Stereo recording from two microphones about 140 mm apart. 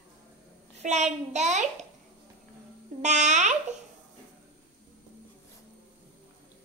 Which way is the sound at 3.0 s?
60° right (ahead or behind).